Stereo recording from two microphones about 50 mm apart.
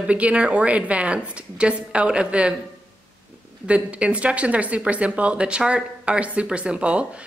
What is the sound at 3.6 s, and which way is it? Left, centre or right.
Speech, right.